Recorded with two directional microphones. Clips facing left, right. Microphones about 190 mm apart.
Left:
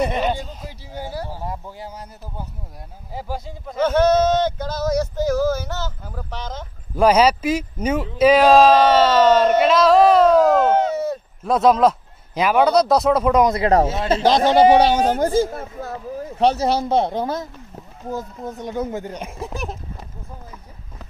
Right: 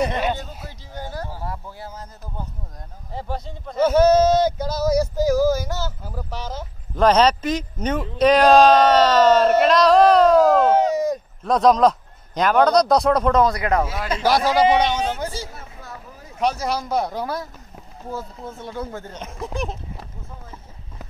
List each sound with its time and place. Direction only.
0.7 s speech: 10° left (ahead or behind)
3.7 s male singing: 10° right (ahead or behind)
7.0 s speech: 10° left (ahead or behind); by 11.1 s 10° right (ahead or behind)
11.4 s speech: 5° left (ahead or behind)
13.5 s speech: 25° left (ahead or behind); by 15.9 s 50° left (ahead or behind)
16.3 s speech: 30° left (ahead or behind); by 19.8 s 5° left (ahead or behind)